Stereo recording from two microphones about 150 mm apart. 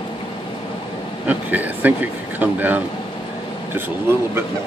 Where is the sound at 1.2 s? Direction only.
10° right (ahead or behind).